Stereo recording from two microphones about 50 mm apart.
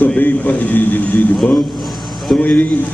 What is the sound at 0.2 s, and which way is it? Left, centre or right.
A man's voice, left.